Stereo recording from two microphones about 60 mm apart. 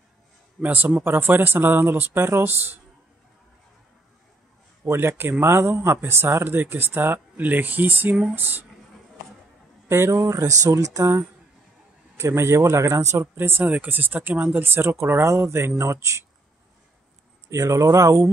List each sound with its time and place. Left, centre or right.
0.6 s speech: right
4.8 s speech: right
9.8 s speech: right
10.2 s speech: right
12.2 s speech: right
13.2 s speech: right
13.7 s speech: right
14.6 s speech: right
17.5 s speech: right